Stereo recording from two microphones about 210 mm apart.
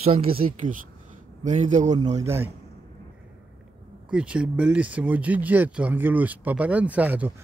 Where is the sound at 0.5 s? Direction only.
40° right (ahead or behind).